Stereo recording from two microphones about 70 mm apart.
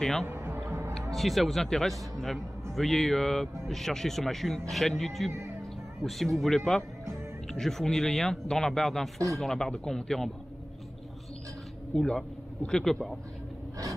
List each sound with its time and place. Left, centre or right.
0.0 s a man's voice: centre
0.7 s music: right
1.1 s a man's voice: centre
11.9 s speech: centre